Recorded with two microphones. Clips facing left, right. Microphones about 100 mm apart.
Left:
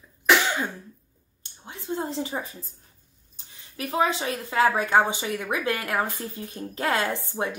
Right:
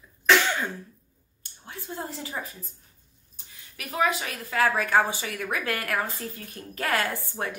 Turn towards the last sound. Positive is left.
turn(degrees=20)  # may be behind; listen again after turning